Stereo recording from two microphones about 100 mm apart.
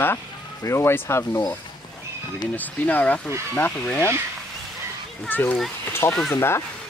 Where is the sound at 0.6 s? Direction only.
25° left (ahead or behind).